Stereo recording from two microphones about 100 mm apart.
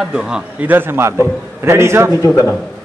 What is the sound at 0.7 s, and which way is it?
A man's voice, 20° right (ahead or behind).